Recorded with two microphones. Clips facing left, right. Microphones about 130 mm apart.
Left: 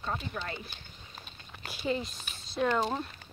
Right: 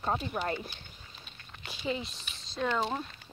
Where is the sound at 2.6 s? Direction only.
10° left (ahead or behind).